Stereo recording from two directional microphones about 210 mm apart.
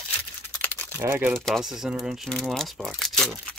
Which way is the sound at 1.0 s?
10° right (ahead or behind).